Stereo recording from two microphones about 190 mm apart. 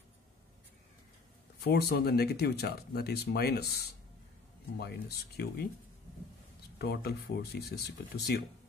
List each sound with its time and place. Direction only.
1.6 s speech: 55° left (ahead or behind)
6.8 s speech: 55° left (ahead or behind)